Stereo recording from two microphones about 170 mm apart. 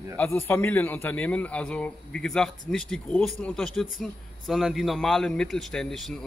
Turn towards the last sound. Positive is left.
turn(degrees=0)  # may be behind; listen again after turning